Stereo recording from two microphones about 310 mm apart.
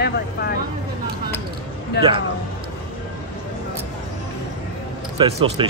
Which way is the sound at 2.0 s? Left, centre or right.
Left.